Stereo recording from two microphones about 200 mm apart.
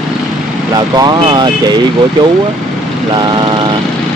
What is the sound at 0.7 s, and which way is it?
Speech, 20° right (ahead or behind).